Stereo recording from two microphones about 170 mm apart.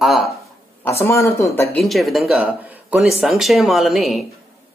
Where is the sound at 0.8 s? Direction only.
15° left (ahead or behind).